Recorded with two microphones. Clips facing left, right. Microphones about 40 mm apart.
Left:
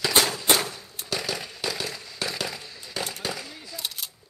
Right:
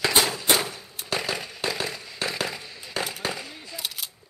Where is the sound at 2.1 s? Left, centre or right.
Right; by 4.1 s centre.